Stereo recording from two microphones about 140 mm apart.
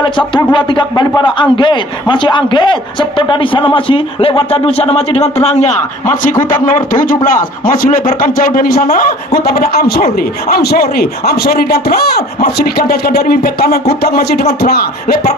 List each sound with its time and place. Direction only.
0.0 s a man's voice: 35° left (ahead or behind); by 5.8 s 50° left (ahead or behind)
6.6 s speech: 75° left (ahead or behind)
7.6 s speech: 85° left